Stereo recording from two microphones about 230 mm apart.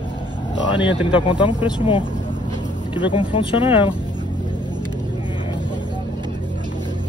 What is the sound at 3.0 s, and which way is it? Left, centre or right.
Speech, left.